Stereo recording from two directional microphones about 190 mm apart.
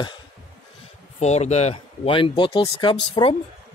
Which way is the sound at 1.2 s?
35° left (ahead or behind).